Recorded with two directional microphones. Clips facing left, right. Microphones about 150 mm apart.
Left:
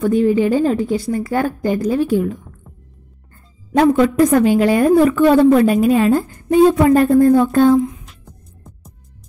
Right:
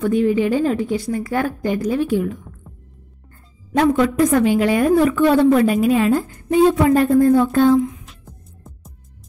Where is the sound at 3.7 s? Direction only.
40° left (ahead or behind).